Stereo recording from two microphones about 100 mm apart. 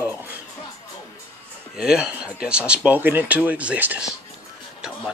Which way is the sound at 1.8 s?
5° right (ahead or behind).